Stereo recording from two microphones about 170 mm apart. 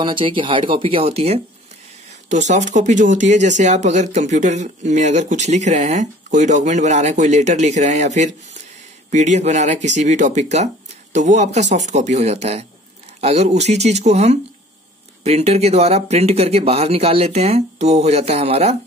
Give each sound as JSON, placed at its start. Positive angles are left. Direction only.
{"t": 0.0, "sound": "speech", "side_deg": -30}